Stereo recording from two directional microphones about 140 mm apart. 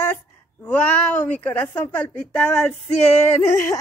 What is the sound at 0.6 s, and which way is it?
A woman's voice, 15° left (ahead or behind).